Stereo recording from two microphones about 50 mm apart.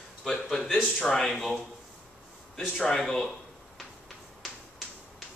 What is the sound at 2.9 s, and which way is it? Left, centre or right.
Speech, centre.